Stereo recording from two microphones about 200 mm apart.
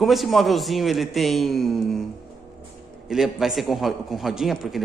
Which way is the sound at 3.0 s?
Centre (ahead or behind).